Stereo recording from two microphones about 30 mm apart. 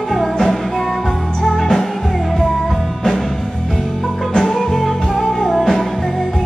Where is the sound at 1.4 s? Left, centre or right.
Centre.